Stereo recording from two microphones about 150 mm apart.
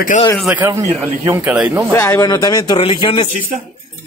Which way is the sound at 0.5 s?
20° right (ahead or behind).